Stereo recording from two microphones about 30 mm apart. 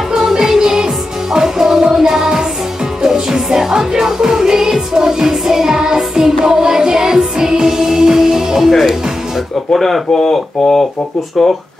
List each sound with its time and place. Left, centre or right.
0.2 s music: centre
1.8 s music of asia: centre
3.0 s music: centre
9.8 s speech: centre